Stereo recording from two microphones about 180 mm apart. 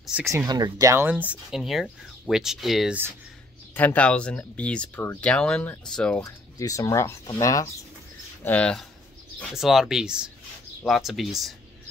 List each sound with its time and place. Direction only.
0.0 s speech: centre (ahead or behind)
0.3 s speech: 20° right (ahead or behind); by 6.2 s 5° left (ahead or behind)
6.2 s speech: 20° left (ahead or behind)
8.5 s speech: 5° left (ahead or behind)